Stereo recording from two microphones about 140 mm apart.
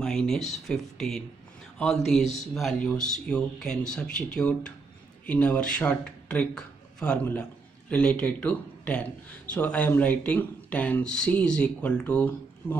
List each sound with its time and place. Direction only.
0.0 s speech: 5° left (ahead or behind)